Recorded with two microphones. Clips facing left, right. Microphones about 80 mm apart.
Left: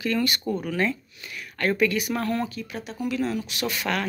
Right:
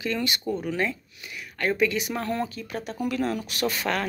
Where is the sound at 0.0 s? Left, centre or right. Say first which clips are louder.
Left 3 dB; right.